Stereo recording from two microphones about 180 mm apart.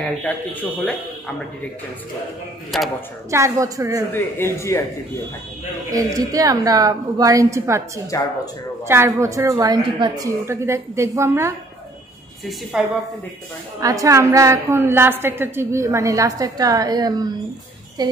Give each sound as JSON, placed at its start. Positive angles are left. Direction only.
{"t": 0.2, "sound": "speech", "side_deg": 10}
{"t": 2.7, "sound": "a woman's voice", "side_deg": 0}
{"t": 3.3, "sound": "a woman's voice", "side_deg": -15}
{"t": 4.1, "sound": "speech", "side_deg": 15}
{"t": 5.9, "sound": "a woman's voice", "side_deg": -20}
{"t": 12.7, "sound": "a woman's voice", "side_deg": -5}
{"t": 13.7, "sound": "a woman's voice", "side_deg": -20}